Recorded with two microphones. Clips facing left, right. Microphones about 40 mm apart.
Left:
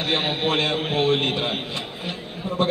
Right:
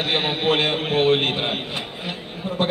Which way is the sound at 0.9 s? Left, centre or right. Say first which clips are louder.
Right 3 dB; right.